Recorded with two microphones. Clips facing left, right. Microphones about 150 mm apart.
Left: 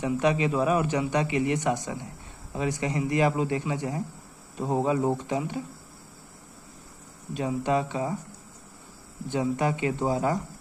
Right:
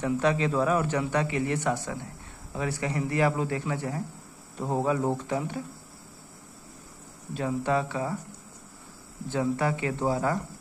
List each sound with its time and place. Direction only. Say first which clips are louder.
0.0 s speech: left 1 dB; 15° left (ahead or behind)
7.3 s speech: left 1 dB; 20° left (ahead or behind)
9.3 s speech: left 1 dB; 15° left (ahead or behind)